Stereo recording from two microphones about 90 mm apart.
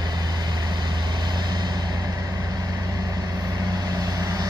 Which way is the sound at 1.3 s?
50° right (ahead or behind).